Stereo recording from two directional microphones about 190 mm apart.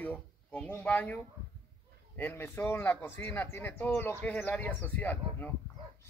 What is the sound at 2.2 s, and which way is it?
Speech, 10° left (ahead or behind).